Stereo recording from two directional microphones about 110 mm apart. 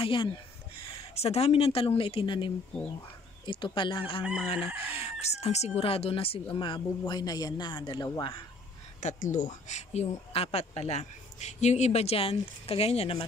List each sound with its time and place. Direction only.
0.0 s speech: 50° left (ahead or behind)
0.7 s speech: 65° left (ahead or behind)
4.2 s chicken: 10° right (ahead or behind)
4.9 s speech: 70° left (ahead or behind)
6.5 s speech: 50° left (ahead or behind)
9.0 s speech: 90° left; by 13.2 s 65° left (ahead or behind)